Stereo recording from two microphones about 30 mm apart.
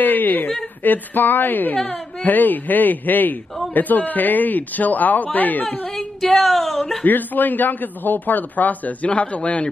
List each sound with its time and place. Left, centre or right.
0.0 s a woman's voice: left
2.2 s speech: left
6.3 s speech: centre
7.1 s a man's voice: left
9.0 s a man's voice: left